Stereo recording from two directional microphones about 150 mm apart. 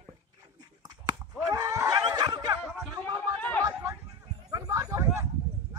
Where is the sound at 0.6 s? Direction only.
25° right (ahead or behind).